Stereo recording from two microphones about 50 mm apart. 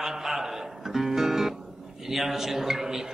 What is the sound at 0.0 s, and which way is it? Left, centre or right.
Music, centre.